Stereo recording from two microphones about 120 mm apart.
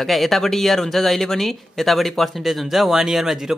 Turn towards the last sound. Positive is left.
turn(degrees=-5)  # may be behind; listen again after turning